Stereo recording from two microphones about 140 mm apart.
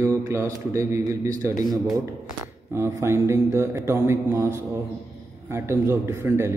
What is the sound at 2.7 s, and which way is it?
A man's voice, 20° right (ahead or behind).